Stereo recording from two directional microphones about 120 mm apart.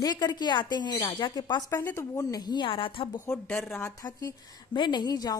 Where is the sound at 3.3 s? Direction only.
15° left (ahead or behind).